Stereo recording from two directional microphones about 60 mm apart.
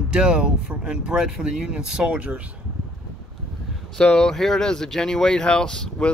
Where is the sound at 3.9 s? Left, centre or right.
Centre.